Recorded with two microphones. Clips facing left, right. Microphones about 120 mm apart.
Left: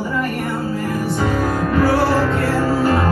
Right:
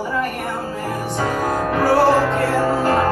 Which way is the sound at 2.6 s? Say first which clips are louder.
Left 1 dB; 25° right (ahead or behind).